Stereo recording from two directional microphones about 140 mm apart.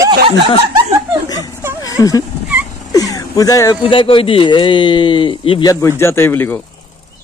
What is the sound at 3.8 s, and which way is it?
A man's voice, 40° left (ahead or behind).